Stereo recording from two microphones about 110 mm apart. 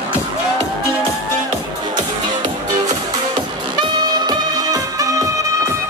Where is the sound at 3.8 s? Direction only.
40° right (ahead or behind).